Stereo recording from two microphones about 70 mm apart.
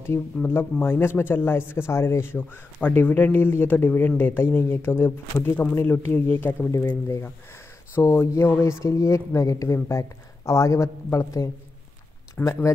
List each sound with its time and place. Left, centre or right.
0.5 s speech: left
7.1 s speech: left
12.4 s speech: left